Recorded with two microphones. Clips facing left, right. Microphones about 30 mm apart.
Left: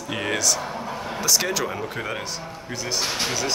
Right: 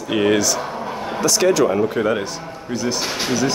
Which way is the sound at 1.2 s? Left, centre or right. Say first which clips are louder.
Right 8 dB; centre.